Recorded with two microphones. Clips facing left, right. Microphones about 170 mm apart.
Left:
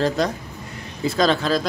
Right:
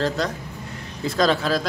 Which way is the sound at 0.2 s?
15° left (ahead or behind).